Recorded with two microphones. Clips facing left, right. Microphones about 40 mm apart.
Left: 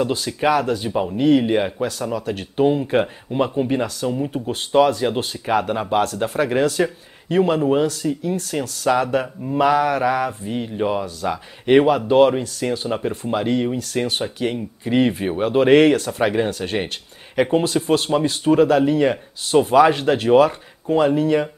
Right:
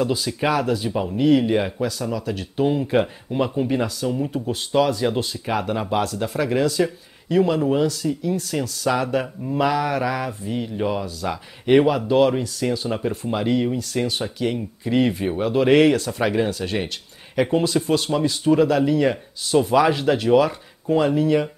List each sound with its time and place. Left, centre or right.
0.0 s speech: left
0.4 s speech: centre; by 2.6 s left
2.6 s speech: centre
4.3 s speech: left
5.0 s speech: centre
6.1 s speech: left
8.8 s speech: centre
20.9 s speech: centre